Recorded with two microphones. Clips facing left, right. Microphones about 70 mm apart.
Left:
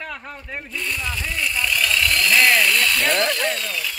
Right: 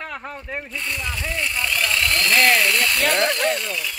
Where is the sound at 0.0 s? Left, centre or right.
Right.